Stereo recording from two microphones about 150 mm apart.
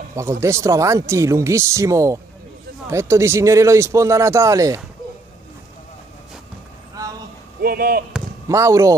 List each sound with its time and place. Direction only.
0.1 s speech: 20° right (ahead or behind)
7.0 s a sound: 20° right (ahead or behind)
7.6 s speech: 80° right
8.5 s speech: 20° right (ahead or behind)